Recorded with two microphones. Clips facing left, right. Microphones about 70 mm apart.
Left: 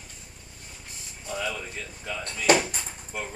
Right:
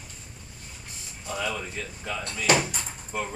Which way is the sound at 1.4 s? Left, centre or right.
Centre.